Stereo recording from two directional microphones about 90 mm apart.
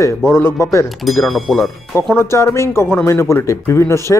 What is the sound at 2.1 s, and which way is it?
Speech, 30° left (ahead or behind).